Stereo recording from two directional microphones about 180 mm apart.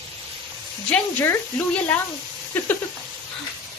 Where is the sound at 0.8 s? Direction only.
5° left (ahead or behind).